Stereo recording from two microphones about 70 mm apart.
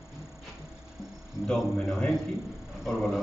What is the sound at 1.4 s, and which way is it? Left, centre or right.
A man's voice, centre.